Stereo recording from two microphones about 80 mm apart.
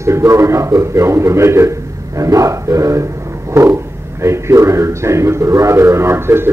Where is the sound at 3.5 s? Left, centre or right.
Right.